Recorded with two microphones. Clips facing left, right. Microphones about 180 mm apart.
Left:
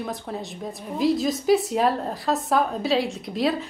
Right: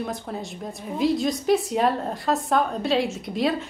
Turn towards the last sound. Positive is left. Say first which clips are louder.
# even
turn(degrees=0)  # may be behind; listen again after turning